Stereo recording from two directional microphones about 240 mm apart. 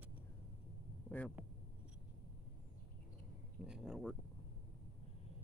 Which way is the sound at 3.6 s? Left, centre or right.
Centre.